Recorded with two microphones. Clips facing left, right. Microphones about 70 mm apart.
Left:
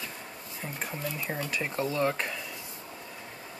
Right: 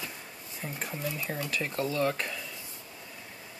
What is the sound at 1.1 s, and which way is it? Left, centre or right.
Speech, left.